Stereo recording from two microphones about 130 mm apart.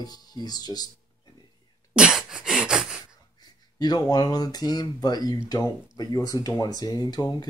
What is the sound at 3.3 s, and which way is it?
Speech, 30° left (ahead or behind).